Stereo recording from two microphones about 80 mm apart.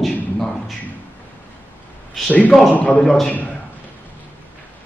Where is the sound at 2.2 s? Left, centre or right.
Centre.